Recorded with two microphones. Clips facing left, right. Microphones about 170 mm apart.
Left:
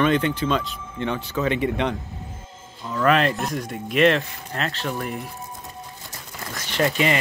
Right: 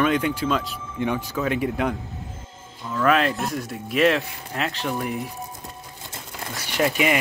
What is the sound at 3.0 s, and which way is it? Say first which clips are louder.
Speech: left 1 dB; 5° right (ahead or behind).